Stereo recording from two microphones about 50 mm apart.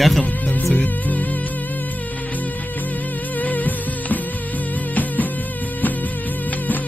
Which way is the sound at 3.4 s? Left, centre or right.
Left.